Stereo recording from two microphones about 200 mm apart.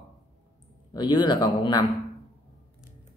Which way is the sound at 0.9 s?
20° left (ahead or behind).